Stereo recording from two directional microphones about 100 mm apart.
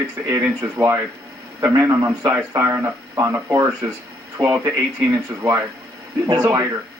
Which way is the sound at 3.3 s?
20° right (ahead or behind).